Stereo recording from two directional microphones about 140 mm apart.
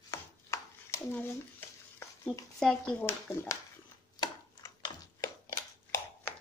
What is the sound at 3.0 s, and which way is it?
Speech, 20° left (ahead or behind).